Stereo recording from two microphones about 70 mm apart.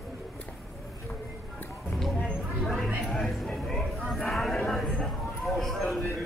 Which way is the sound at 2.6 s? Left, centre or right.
Centre.